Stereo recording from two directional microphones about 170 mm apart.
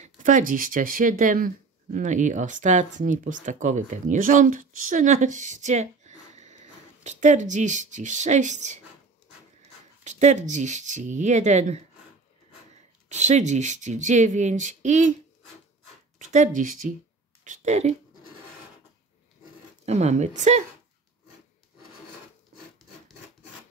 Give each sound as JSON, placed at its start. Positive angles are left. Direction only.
{"t": 0.0, "sound": "speech", "side_deg": -50}
{"t": 10.0, "sound": "speech", "side_deg": -45}
{"t": 13.1, "sound": "speech", "side_deg": -45}
{"t": 16.3, "sound": "speech", "side_deg": -50}
{"t": 19.8, "sound": "speech", "side_deg": -40}